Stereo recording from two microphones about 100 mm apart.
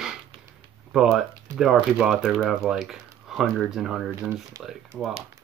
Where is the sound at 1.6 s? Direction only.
5° right (ahead or behind).